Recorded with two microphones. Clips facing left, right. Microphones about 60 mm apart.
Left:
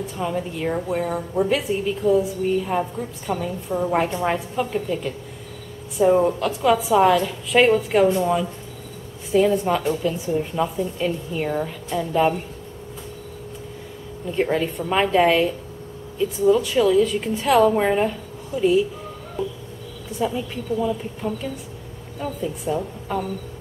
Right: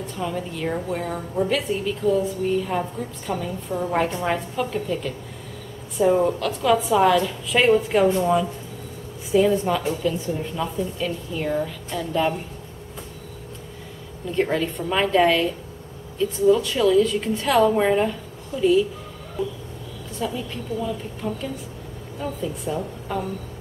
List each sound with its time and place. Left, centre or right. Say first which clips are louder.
0.0 s a woman's voice: left 2 dB; centre
14.3 s a woman's voice: left 1 dB; centre
16.4 s a woman's voice: left 1 dB; centre
20.2 s a woman's voice: left 3 dB; centre